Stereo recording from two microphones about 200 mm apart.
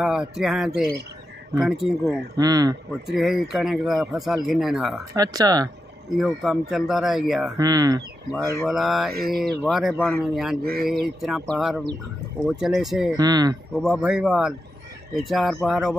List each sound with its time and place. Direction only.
0.0 s speech: centre (ahead or behind)
2.3 s speech: 20° right (ahead or behind)
3.1 s speech: centre (ahead or behind)
5.1 s speech: 20° right (ahead or behind)
6.1 s speech: centre (ahead or behind)
7.5 s speech: 20° right (ahead or behind)
8.6 s speech: centre (ahead or behind)
13.1 s speech: 20° right (ahead or behind)
13.7 s speech: 5° right (ahead or behind)